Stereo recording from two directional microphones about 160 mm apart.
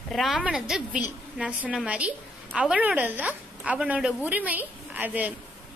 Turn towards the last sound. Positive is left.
turn(degrees=-10)  # may be behind; listen again after turning